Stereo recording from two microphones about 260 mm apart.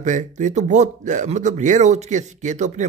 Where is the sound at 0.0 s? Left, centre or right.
Right.